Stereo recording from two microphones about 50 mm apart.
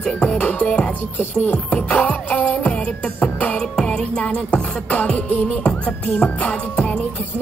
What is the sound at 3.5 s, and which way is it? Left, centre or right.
Music, centre.